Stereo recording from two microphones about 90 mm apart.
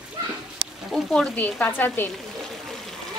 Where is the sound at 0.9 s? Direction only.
5° left (ahead or behind); by 2.1 s 20° left (ahead or behind).